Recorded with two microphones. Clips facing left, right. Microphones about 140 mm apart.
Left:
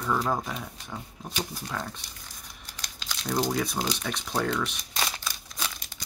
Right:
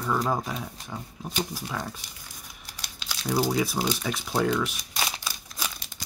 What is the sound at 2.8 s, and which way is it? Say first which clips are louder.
Crumpling: right 1 dB; 5° right (ahead or behind).